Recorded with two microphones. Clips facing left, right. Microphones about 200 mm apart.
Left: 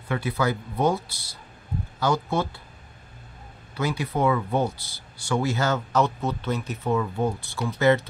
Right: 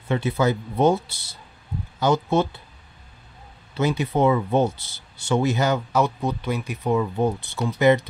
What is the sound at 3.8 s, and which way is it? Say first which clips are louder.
Speech: right 4 dB; 20° right (ahead or behind).